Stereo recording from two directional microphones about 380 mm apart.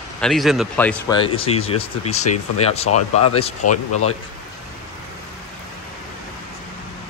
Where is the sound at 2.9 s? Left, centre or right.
Left.